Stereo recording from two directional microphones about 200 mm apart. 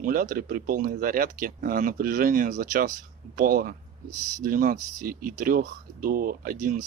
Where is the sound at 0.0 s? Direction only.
45° right (ahead or behind).